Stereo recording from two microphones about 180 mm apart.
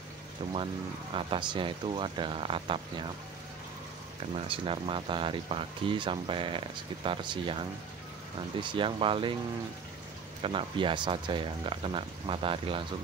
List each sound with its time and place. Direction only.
1.1 s speech: 25° right (ahead or behind)
4.5 s speech: 30° right (ahead or behind)
10.4 s speech: 30° right (ahead or behind)